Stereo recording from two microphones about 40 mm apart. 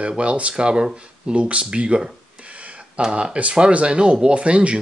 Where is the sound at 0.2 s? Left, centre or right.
Right.